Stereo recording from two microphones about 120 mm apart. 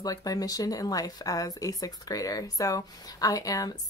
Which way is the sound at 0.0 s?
30° left (ahead or behind).